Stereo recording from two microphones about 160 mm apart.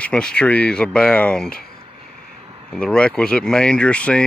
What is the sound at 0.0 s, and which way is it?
Speech, 5° left (ahead or behind).